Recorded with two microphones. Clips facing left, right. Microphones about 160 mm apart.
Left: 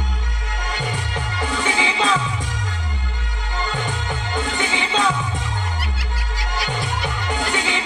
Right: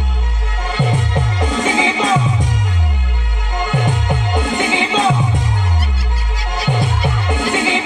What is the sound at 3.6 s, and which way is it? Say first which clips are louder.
Music: right 7 dB; 20° right (ahead or behind).